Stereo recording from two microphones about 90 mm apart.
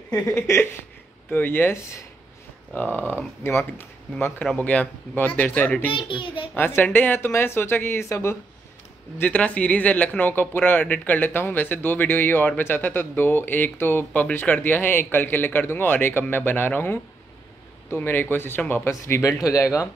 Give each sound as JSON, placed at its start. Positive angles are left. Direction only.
{"t": 0.3, "sound": "a man's voice", "side_deg": 25}
{"t": 2.7, "sound": "a man's voice", "side_deg": 20}
{"t": 5.9, "sound": "a child's voice", "side_deg": 70}
{"t": 6.5, "sound": "a man's voice", "side_deg": 25}
{"t": 9.2, "sound": "a man's voice", "side_deg": 15}